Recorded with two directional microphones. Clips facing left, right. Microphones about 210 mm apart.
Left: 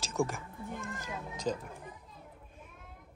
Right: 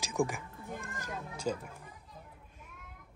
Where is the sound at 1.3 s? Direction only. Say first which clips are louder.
Left 1 dB; 10° right (ahead or behind).